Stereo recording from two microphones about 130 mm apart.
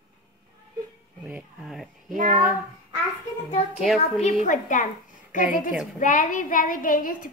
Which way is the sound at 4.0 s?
55° left (ahead or behind).